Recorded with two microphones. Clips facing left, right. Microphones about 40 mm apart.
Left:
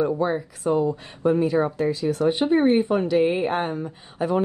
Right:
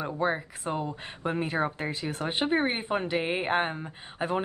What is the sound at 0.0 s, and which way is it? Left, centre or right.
Speech, right.